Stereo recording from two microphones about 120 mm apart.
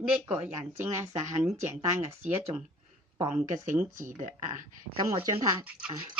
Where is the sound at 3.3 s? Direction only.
90° right.